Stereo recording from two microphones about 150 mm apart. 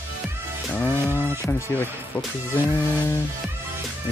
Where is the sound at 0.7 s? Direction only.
15° left (ahead or behind).